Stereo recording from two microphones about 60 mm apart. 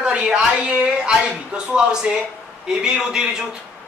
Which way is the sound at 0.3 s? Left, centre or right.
Right.